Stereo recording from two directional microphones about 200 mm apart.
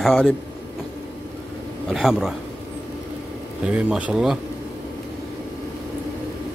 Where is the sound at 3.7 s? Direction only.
5° right (ahead or behind).